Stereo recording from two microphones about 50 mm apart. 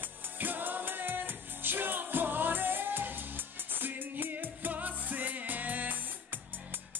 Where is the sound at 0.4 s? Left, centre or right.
Right.